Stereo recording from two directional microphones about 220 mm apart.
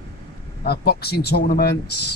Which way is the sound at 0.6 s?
45° left (ahead or behind).